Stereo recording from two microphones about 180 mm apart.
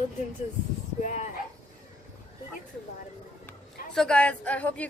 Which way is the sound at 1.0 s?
45° left (ahead or behind).